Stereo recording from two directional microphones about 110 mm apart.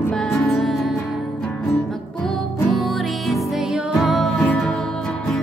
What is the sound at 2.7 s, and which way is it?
Music, centre (ahead or behind).